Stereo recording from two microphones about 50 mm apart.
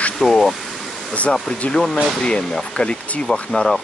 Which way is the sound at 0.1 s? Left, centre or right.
Centre.